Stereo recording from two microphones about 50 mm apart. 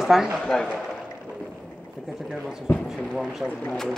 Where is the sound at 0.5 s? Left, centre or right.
Centre.